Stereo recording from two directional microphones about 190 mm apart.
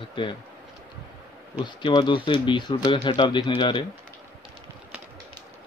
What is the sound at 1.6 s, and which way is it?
Speech, 25° left (ahead or behind).